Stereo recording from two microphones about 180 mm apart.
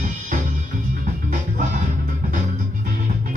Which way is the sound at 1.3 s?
45° right (ahead or behind).